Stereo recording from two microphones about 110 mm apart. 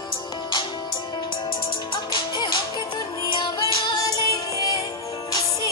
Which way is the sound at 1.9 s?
45° left (ahead or behind).